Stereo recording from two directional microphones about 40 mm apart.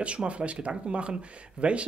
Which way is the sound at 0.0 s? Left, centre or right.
Right.